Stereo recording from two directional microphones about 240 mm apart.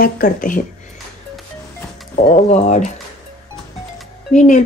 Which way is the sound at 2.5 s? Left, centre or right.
Left.